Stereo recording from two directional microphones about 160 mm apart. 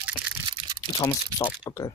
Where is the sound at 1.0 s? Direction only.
20° left (ahead or behind).